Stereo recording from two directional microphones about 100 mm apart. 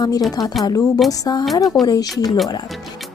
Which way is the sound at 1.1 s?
40° left (ahead or behind).